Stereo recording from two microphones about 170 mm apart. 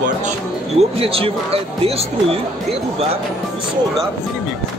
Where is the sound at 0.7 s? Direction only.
35° right (ahead or behind).